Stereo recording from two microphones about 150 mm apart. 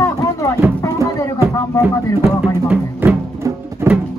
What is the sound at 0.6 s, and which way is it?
Music, 15° right (ahead or behind).